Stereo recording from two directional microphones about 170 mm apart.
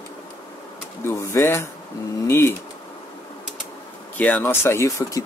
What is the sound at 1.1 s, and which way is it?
Speech, 15° left (ahead or behind).